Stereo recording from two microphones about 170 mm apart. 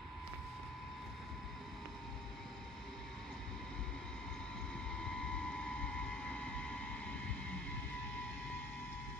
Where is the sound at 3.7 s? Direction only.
5° left (ahead or behind).